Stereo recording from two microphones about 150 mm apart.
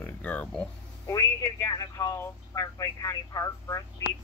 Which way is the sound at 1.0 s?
25° left (ahead or behind).